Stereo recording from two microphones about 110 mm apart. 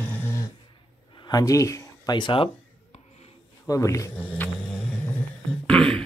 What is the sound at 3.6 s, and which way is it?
Speech, 30° left (ahead or behind).